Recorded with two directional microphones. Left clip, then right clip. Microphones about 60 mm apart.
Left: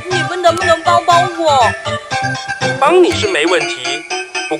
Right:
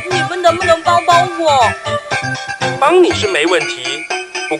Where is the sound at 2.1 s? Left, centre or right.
Left.